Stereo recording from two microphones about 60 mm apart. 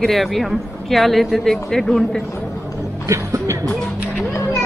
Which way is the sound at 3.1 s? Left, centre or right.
Right.